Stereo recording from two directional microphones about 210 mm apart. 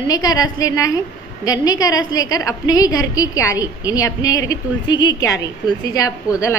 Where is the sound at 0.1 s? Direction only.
15° left (ahead or behind).